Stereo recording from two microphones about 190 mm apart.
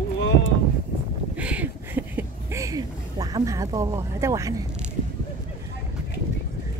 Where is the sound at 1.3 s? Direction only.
5° right (ahead or behind).